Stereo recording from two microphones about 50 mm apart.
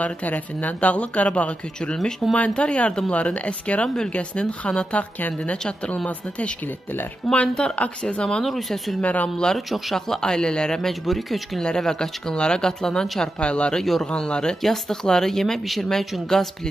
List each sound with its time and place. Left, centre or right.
0.0 s speech: left
3.8 s speech: centre
4.1 s speech: left
7.3 s speech: left
8.5 s speech: centre
9.0 s speech: left
9.9 s speech: centre
10.9 s speech: centre
11.6 s speech: centre
13.8 s speech: centre